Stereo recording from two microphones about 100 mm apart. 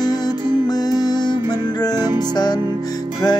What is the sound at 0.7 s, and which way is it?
Music, 40° left (ahead or behind).